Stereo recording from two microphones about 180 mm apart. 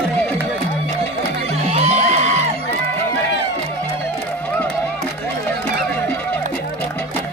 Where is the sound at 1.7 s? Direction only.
35° right (ahead or behind).